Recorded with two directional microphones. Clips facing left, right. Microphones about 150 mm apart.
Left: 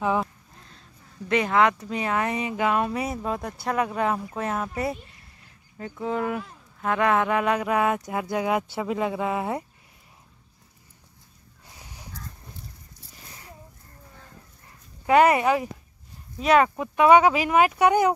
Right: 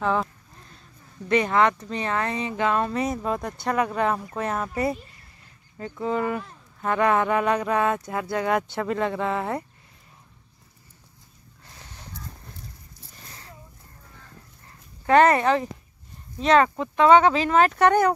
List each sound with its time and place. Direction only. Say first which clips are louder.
0.0 s speech: even; 15° left (ahead or behind)
1.3 s speech: right 1 dB; 5° left (ahead or behind)
11.6 s crow: even; 10° left (ahead or behind)
15.0 s speech: right 1 dB; 10° left (ahead or behind)